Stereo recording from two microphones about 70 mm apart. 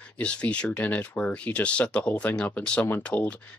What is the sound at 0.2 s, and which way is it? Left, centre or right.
Speech, centre.